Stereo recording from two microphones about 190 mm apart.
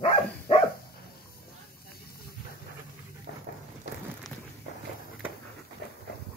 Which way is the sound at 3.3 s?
60° left (ahead or behind).